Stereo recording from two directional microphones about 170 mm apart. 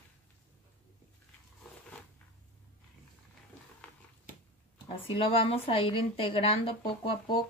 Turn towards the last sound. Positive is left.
turn(degrees=30)  # may be behind; listen again after turning